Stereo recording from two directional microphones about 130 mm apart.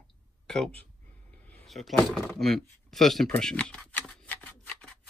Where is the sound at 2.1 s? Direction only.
Centre (ahead or behind).